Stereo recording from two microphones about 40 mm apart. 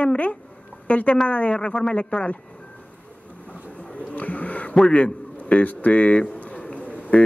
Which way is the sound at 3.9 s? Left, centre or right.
Left.